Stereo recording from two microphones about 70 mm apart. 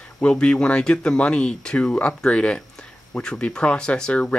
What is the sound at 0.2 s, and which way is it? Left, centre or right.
Speech, centre.